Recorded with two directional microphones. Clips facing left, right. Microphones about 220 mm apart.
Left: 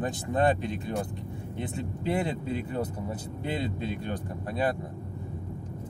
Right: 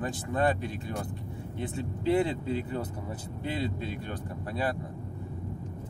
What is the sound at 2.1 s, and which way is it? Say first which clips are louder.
Speech: right 2 dB; 15° left (ahead or behind).